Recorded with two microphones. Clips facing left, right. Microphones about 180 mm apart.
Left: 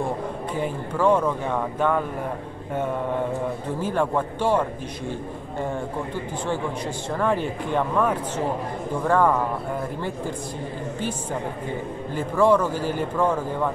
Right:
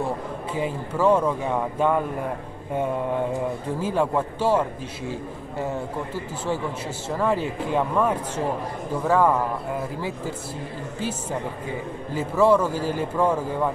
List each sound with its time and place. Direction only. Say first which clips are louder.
0.6 s speech: right 1 dB; 10° right (ahead or behind)
3.8 s a man's voice: even; 10° right (ahead or behind)
12.2 s speech: even; 10° right (ahead or behind)